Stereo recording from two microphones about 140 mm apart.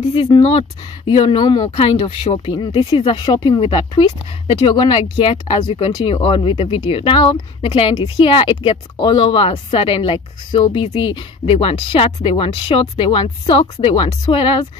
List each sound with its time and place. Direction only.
0.1 s speech: 40° left (ahead or behind)
1.4 s speech: 30° left (ahead or behind)
1.8 s speech: 45° left (ahead or behind)
2.5 s speech: 40° left (ahead or behind)